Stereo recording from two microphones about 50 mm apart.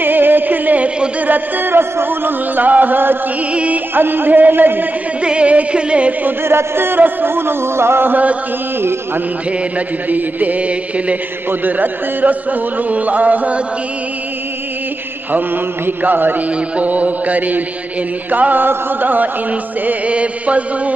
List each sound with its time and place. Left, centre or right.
0.0 s music: right
1.3 s music: right
3.5 s music: right
3.9 s speech: right
5.2 s music: right
6.4 s music: right
8.1 s speech: right
10.0 s speech: right
16.0 s speech: right
20.1 s music: right